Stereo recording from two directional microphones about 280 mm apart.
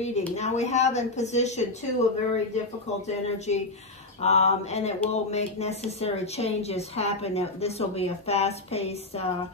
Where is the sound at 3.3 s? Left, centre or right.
Left.